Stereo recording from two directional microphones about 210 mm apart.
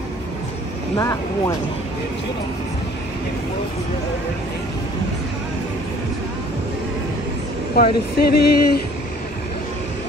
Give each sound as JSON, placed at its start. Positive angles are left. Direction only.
{"t": 0.9, "sound": "speech", "side_deg": 15}
{"t": 7.7, "sound": "speech", "side_deg": 50}